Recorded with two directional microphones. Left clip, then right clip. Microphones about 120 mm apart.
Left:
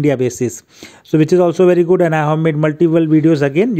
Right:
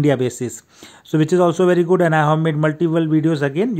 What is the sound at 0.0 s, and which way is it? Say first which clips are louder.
A man's voice: left 3 dB; 35° left (ahead or behind).